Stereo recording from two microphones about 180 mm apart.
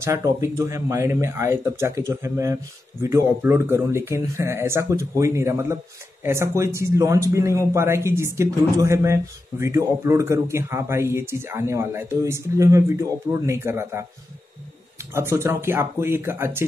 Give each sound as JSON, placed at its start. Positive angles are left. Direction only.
{"t": 0.0, "sound": "a man's voice", "side_deg": -15}
{"t": 15.1, "sound": "a man's voice", "side_deg": -15}